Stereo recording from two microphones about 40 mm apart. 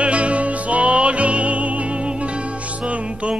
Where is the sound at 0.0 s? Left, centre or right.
Right.